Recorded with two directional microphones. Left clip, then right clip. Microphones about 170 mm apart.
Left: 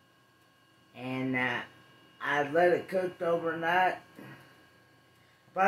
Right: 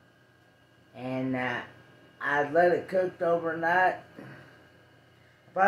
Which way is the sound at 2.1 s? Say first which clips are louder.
Right 3 dB; 20° left (ahead or behind).